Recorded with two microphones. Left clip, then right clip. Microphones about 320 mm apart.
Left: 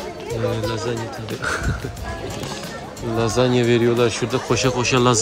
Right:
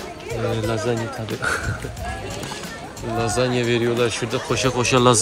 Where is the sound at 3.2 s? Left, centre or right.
Centre.